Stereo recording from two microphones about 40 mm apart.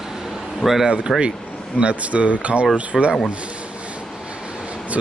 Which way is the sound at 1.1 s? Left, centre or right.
Centre.